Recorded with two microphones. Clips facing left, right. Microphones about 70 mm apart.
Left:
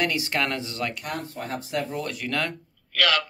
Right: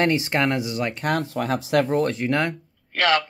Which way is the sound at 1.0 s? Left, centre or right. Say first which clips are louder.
Right 9 dB; right.